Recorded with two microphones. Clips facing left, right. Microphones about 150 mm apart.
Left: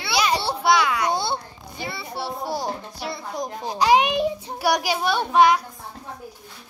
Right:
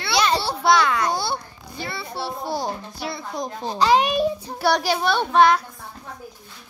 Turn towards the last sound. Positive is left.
turn(degrees=10)  # may be behind; listen again after turning